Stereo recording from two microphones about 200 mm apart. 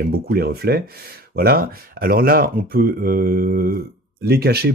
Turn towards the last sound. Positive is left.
turn(degrees=-50)  # may be behind; listen again after turning